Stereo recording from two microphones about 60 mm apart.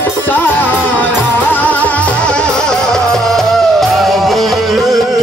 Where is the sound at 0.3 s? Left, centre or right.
Left.